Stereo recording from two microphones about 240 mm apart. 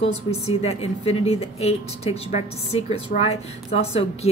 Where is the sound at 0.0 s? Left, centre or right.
Left.